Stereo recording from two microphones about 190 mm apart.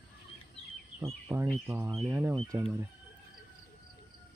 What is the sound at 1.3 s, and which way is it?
Speech, 15° right (ahead or behind).